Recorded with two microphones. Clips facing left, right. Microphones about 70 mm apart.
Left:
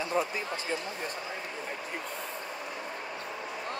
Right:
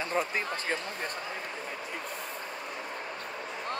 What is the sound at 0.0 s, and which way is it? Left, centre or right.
Speech, right.